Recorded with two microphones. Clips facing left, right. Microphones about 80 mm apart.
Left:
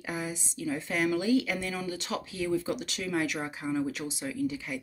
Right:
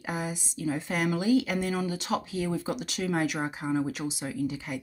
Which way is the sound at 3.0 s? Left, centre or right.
Right.